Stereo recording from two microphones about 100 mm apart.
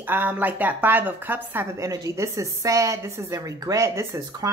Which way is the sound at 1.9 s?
35° right (ahead or behind).